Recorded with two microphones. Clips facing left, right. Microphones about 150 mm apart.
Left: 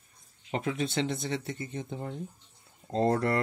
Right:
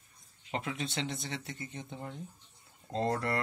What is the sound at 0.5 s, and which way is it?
Speech, 40° left (ahead or behind).